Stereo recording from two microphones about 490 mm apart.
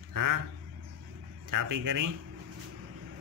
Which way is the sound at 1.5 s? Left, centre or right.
Right.